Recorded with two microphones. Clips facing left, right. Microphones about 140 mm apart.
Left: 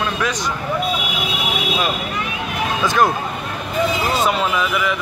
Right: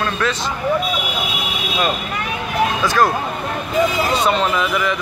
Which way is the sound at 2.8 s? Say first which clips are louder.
Left 2 dB; 20° left (ahead or behind).